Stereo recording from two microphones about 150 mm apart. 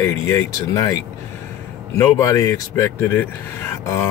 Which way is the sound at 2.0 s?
20° left (ahead or behind).